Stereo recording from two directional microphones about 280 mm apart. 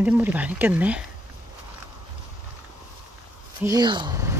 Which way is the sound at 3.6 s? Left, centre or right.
Centre.